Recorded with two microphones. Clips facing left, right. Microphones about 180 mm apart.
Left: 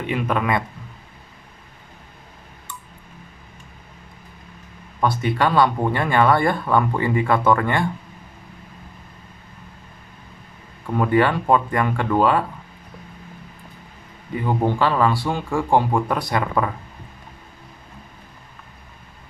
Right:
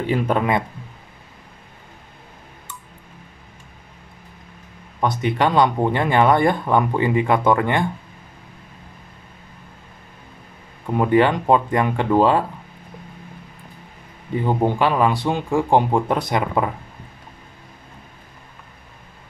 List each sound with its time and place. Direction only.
0.0 s speech: 30° right (ahead or behind)
5.0 s speech: 20° right (ahead or behind)
10.9 s speech: 20° right (ahead or behind)
14.6 s speech: 15° right (ahead or behind)